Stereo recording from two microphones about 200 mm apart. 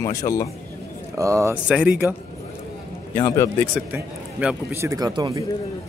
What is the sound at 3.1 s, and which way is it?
Speech, 15° left (ahead or behind).